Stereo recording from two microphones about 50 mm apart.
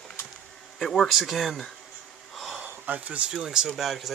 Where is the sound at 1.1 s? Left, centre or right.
Centre.